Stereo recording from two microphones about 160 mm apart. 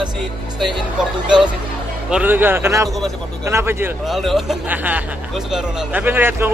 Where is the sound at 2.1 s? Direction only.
10° right (ahead or behind).